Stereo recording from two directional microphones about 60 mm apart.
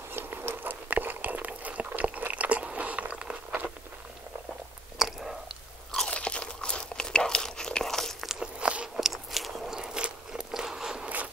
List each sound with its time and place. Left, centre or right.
0.1 s a sound: right; by 3.7 s centre
4.9 s chewing: centre
6.0 s crunch: centre
8.3 s biting: centre
9.0 s biting: centre